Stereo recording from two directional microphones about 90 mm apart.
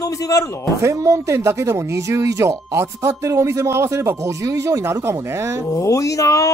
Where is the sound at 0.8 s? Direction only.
35° right (ahead or behind).